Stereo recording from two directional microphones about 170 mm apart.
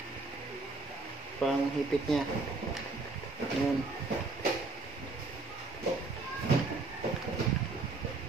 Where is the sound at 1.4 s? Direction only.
5° left (ahead or behind).